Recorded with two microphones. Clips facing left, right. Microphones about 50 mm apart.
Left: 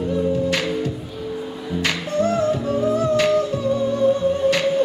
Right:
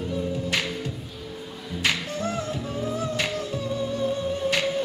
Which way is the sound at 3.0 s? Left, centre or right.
Centre.